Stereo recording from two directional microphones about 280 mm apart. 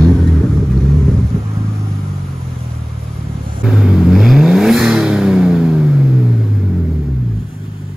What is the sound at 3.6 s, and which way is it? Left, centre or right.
Vehicle, centre.